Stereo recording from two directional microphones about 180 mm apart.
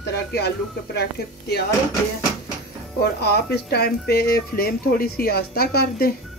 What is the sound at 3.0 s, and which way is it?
Speech, 65° left (ahead or behind).